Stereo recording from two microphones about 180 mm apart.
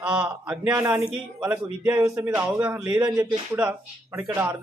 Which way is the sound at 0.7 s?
20° right (ahead or behind).